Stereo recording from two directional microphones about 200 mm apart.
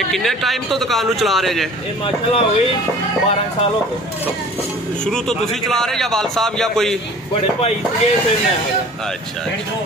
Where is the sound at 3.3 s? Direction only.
30° left (ahead or behind).